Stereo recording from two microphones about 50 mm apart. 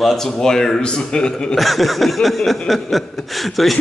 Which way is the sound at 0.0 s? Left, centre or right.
Centre.